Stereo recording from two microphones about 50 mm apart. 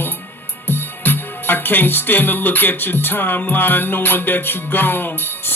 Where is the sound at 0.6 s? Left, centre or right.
Left.